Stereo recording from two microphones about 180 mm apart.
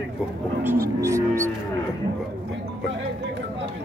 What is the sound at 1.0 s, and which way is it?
Livestock, 15° right (ahead or behind).